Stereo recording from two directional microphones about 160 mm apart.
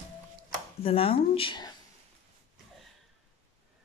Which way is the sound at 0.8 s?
35° left (ahead or behind).